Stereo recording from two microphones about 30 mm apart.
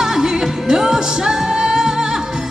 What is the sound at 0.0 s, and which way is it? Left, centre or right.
Music, centre.